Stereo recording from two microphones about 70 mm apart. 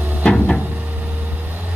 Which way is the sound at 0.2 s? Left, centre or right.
Centre.